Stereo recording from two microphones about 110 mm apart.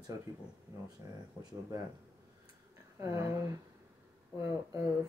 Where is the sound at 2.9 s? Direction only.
25° right (ahead or behind).